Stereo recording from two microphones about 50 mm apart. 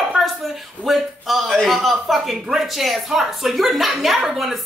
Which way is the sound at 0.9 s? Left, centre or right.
Centre.